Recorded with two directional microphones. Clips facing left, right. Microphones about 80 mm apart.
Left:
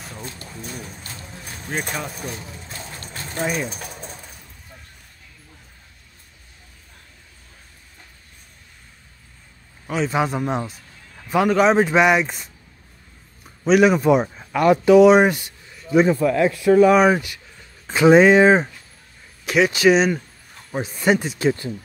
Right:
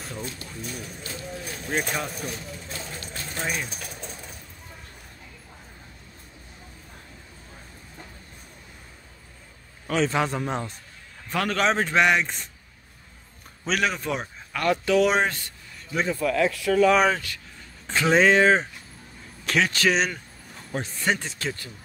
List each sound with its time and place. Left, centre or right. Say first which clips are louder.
0.6 s speech: left 2 dB; left
1.4 s a sound: even; centre
2.0 s speech: left 1 dB; centre
2.2 s a sound: left 2 dB; left
3.0 s sewing machine: left 8 dB; left
9.8 s a man's voice: left 2 dB; centre
13.7 s speech: left 11 dB; centre
15.1 s a sound: left 8 dB; centre
16.1 s speech: left 6 dB; left